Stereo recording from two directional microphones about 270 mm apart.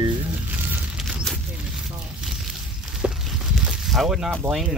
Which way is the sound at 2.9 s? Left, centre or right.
Centre.